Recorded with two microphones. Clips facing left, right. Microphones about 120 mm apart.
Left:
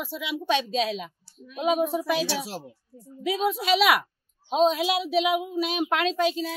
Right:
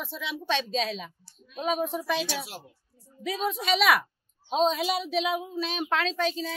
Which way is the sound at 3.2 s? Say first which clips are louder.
Left 4 dB; 5° left (ahead or behind).